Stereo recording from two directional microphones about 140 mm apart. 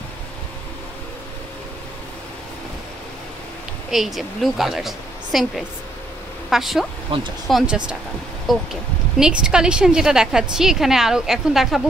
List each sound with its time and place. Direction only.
3.9 s a woman's voice: centre (ahead or behind)
7.1 s speech: 40° right (ahead or behind)
7.4 s a woman's voice: 5° right (ahead or behind)